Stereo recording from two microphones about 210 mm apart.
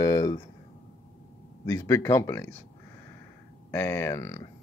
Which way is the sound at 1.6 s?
15° left (ahead or behind).